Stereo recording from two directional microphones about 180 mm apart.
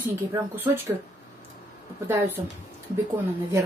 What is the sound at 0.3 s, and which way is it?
Speech, 10° right (ahead or behind).